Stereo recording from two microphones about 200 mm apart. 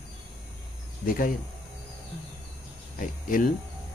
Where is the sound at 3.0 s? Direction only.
40° left (ahead or behind).